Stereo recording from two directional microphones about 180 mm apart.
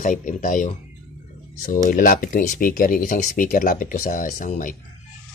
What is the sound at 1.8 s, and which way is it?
Speech, 50° left (ahead or behind).